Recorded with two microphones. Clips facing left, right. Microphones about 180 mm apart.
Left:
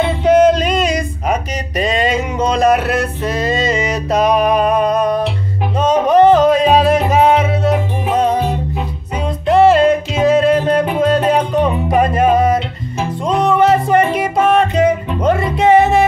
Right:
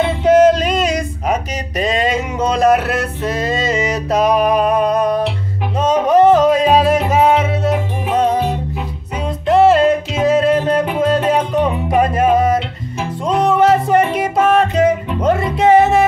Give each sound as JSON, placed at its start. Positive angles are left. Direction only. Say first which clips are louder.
{"t": 0.2, "sound": "a sound", "louder": "even", "side_deg": -5}
{"t": 3.9, "sound": "music", "louder": "even", "side_deg": -5}
{"t": 9.5, "sound": "music", "louder": "left 1 dB", "side_deg": 0}